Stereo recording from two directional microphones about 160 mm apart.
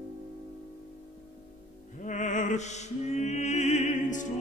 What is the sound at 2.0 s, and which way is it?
Music, 50° left (ahead or behind).